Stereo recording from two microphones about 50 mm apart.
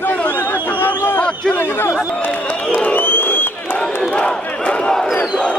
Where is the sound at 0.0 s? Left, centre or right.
Left.